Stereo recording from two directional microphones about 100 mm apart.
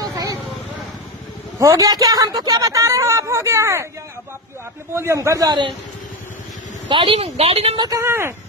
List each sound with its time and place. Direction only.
0.0 s vehicle: 40° right (ahead or behind)
1.6 s a woman's voice: 40° right (ahead or behind)
4.9 s a woman's voice: 30° right (ahead or behind)
6.9 s a woman's voice: 60° right (ahead or behind); by 7.7 s 90° right
7.9 s speech: 25° right (ahead or behind)